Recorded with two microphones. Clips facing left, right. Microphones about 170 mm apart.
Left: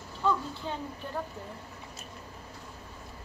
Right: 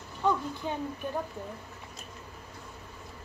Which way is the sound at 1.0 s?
15° right (ahead or behind).